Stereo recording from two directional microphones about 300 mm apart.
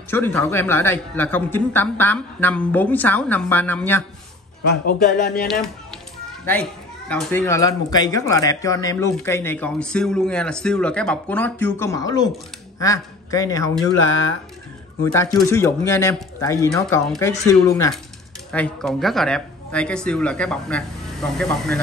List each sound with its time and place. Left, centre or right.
0.1 s speech: centre
4.8 s speech: left
6.4 s speech: centre
15.1 s speech: centre